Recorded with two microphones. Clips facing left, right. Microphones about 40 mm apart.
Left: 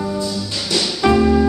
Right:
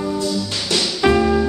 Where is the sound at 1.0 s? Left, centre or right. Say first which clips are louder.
Left 2 dB; centre.